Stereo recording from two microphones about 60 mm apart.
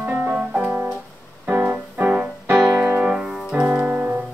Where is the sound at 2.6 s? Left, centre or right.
Right.